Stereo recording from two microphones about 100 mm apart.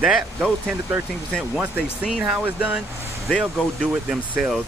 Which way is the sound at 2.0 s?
5° right (ahead or behind).